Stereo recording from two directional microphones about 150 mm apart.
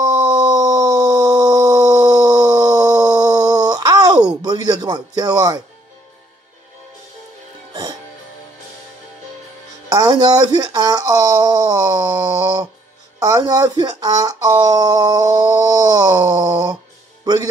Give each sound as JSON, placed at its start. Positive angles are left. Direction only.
{"t": 0.3, "sound": "a sound", "side_deg": -25}
{"t": 4.4, "sound": "speech", "side_deg": -30}
{"t": 9.8, "sound": "speech", "side_deg": -25}
{"t": 17.2, "sound": "music", "side_deg": -25}